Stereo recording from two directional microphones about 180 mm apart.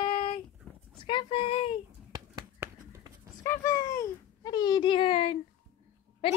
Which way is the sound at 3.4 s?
15° left (ahead or behind).